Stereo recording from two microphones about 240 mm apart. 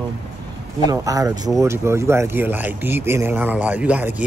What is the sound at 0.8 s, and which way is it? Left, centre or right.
Speech, centre.